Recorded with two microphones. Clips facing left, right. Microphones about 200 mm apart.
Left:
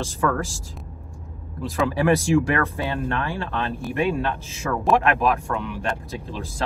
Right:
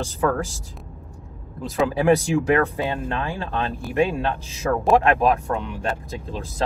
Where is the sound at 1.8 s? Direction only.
15° right (ahead or behind).